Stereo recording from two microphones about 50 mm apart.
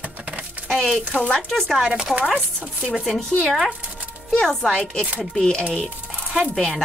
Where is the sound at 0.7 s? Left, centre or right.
Centre.